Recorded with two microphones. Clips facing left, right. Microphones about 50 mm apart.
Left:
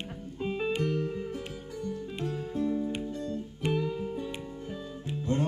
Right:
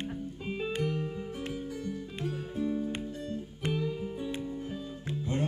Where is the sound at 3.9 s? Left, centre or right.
Centre.